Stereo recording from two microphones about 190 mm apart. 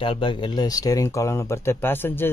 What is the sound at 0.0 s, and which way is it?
Speech, 25° left (ahead or behind).